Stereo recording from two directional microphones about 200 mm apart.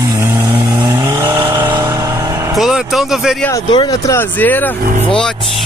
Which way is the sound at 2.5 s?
Centre (ahead or behind).